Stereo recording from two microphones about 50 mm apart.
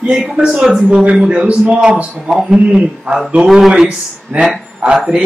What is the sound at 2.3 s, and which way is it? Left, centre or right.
Speech, centre.